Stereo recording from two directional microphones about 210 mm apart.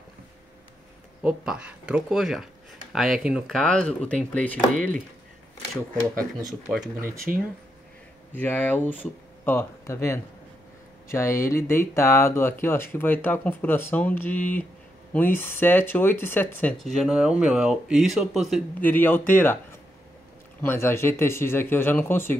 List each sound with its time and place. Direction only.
1.2 s speech: 5° right (ahead or behind)
4.7 s speech: 40° right (ahead or behind)
7.3 s speech: 5° right (ahead or behind)
8.4 s speech: 10° left (ahead or behind)
20.6 s speech: 10° left (ahead or behind)